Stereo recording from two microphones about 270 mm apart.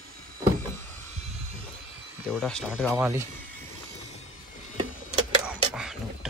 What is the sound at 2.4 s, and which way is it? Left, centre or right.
Speech, centre.